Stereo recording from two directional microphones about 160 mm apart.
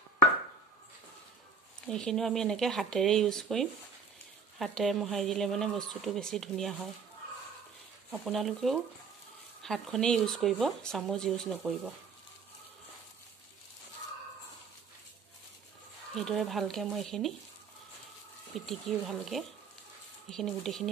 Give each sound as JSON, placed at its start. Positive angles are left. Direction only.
{"t": 1.9, "sound": "speech", "side_deg": 5}
{"t": 8.1, "sound": "speech", "side_deg": 0}
{"t": 16.2, "sound": "speech", "side_deg": 0}
{"t": 18.7, "sound": "speech", "side_deg": 0}